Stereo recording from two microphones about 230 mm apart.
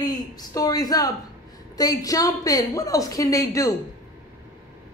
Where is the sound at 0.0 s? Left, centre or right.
Centre.